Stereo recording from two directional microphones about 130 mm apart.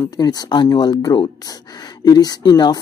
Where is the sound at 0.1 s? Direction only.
30° left (ahead or behind).